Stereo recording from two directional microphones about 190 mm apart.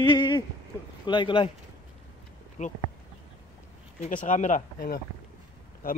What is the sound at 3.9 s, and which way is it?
Speech, 40° left (ahead or behind).